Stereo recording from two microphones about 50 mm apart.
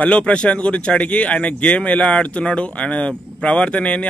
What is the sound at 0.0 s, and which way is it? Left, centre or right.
A man's voice, left.